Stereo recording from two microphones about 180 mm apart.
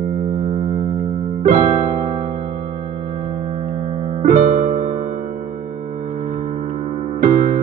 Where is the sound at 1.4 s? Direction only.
45° right (ahead or behind).